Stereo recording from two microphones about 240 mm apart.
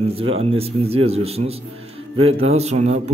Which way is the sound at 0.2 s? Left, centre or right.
Right.